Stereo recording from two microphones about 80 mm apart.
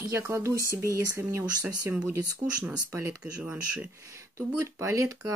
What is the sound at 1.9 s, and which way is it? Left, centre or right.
Speech, centre.